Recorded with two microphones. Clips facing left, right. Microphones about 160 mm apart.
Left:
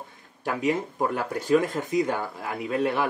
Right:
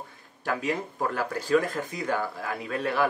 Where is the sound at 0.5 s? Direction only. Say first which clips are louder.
Left 3 dB; 20° left (ahead or behind).